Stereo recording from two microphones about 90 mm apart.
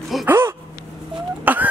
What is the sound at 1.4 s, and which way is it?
Chicken, 20° right (ahead or behind).